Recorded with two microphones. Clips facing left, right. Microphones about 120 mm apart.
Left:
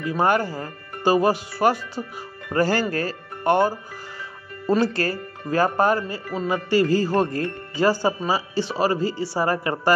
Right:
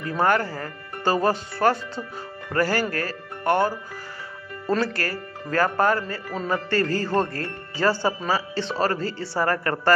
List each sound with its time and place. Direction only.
0.0 s speech: 20° left (ahead or behind)
2.5 s speech: 25° left (ahead or behind)